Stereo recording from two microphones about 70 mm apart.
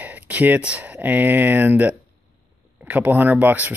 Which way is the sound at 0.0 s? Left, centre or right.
Right.